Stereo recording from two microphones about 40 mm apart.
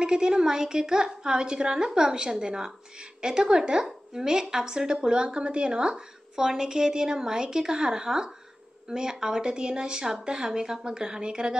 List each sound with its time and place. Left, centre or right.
0.0 s a woman's voice: centre